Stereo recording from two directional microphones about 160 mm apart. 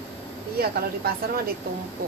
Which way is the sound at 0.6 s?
75° right (ahead or behind).